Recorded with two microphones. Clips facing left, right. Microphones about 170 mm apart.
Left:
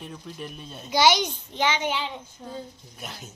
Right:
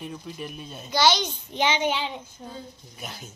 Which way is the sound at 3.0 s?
Centre (ahead or behind).